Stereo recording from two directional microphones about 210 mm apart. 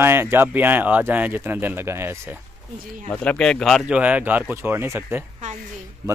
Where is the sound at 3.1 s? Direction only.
5° left (ahead or behind).